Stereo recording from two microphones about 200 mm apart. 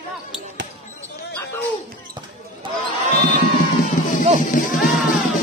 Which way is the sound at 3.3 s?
40° left (ahead or behind).